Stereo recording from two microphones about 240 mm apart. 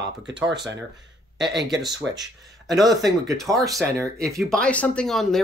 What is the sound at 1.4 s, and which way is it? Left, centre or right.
Speech, right.